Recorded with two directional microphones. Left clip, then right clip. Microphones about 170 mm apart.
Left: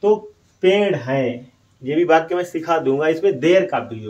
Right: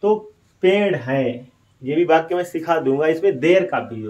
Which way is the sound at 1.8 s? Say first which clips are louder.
Left 1 dB; 5° right (ahead or behind).